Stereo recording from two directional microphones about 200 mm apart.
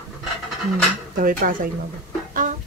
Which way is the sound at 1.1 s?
45° right (ahead or behind).